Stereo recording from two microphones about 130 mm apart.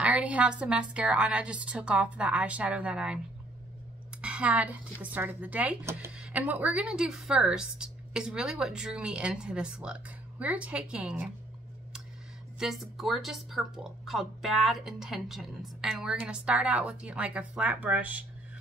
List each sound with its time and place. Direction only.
0.0 s a woman's voice: 10° right (ahead or behind)
4.2 s a woman's voice: 10° right (ahead or behind)
12.5 s a woman's voice: 5° right (ahead or behind)